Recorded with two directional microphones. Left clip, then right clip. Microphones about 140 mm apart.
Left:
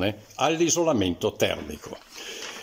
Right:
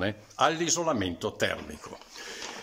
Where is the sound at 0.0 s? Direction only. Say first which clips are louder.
Left 1 dB; 15° left (ahead or behind).